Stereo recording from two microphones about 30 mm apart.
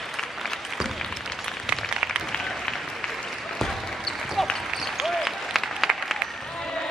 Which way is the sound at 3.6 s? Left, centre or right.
Centre.